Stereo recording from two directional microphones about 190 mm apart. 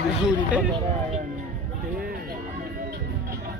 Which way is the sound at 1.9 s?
50° right (ahead or behind).